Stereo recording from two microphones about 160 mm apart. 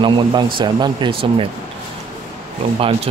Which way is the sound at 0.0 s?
30° right (ahead or behind).